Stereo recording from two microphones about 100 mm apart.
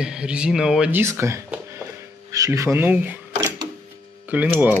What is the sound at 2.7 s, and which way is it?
Speech, 20° right (ahead or behind).